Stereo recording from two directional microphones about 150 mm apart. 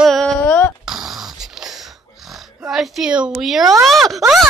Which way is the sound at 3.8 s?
Centre (ahead or behind).